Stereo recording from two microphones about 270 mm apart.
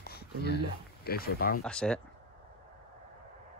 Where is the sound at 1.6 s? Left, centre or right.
Centre.